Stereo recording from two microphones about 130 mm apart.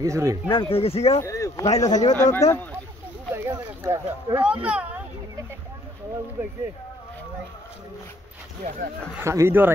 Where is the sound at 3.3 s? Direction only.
20° right (ahead or behind).